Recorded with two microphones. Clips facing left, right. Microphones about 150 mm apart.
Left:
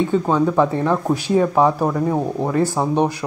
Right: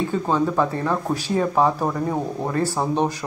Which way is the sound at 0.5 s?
15° left (ahead or behind).